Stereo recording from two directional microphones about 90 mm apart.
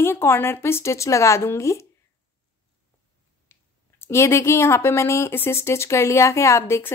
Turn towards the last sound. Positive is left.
turn(degrees=30)  # may be behind; listen again after turning